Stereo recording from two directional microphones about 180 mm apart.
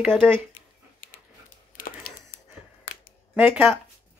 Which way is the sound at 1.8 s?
50° left (ahead or behind).